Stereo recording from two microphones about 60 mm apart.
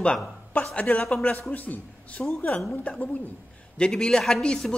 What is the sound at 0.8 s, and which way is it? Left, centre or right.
A man's voice, left.